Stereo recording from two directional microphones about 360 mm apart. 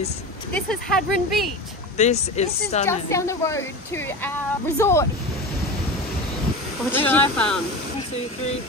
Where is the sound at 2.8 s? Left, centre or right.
Centre.